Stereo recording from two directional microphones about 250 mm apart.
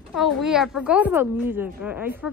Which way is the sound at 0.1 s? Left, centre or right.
Centre.